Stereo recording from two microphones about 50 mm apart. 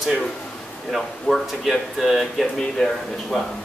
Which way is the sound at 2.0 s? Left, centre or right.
Centre.